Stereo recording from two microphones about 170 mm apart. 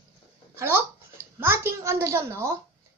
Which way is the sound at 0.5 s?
15° right (ahead or behind).